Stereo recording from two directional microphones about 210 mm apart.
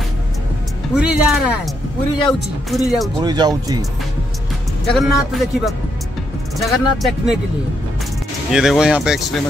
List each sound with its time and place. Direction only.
0.9 s speech: 5° right (ahead or behind)
3.2 s speech: 20° right (ahead or behind)
4.9 s speech: centre (ahead or behind)
8.5 s speech: centre (ahead or behind)